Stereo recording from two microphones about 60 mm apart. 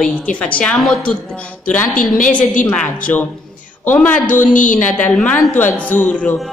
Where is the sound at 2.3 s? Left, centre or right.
Left.